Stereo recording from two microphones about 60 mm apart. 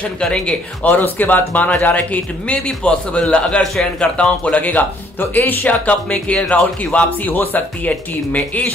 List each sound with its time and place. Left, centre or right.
0.0 s speech: centre
0.8 s speech: left
4.6 s speech: left